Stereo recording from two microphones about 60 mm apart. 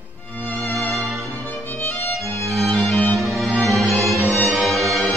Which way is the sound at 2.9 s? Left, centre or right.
Left.